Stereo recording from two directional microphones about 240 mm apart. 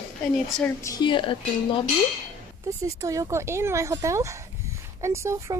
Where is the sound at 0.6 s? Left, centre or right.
Centre.